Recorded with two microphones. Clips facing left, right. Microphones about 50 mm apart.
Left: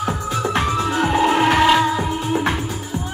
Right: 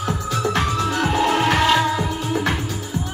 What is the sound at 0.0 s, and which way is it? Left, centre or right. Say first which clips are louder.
Music: left 1 dB; centre.